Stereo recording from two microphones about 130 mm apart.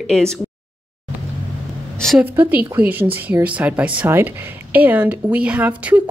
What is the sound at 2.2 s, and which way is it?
Speech, 15° right (ahead or behind).